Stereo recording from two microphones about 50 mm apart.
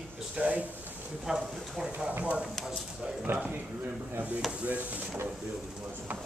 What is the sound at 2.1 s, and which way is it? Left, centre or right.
Speech, right.